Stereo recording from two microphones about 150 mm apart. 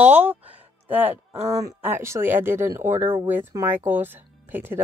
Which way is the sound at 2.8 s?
50° right (ahead or behind).